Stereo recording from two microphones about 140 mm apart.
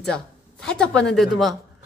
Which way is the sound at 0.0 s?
5° left (ahead or behind).